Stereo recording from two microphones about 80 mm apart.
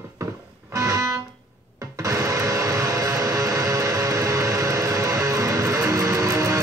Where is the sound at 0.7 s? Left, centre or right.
Right.